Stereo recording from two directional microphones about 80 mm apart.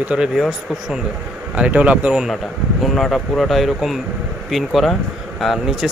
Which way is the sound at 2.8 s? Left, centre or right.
Centre.